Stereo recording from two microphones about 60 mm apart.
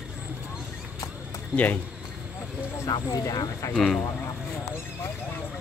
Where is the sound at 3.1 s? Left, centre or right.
Left.